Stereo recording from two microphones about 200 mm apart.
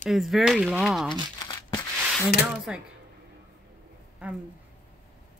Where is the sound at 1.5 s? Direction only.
20° left (ahead or behind).